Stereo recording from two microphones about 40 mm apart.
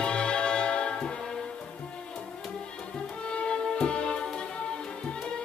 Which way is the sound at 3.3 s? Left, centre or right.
Left.